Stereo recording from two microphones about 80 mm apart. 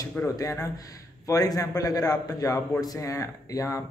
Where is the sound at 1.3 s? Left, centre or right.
Left.